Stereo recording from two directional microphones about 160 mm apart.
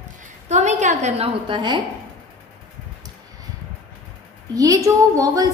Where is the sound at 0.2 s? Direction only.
50° right (ahead or behind); by 1.8 s 30° right (ahead or behind).